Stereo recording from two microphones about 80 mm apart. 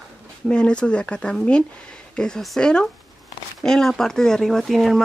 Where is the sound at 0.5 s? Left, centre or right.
Centre.